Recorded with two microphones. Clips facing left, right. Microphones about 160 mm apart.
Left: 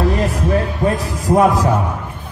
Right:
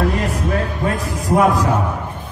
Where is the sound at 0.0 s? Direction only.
35° left (ahead or behind).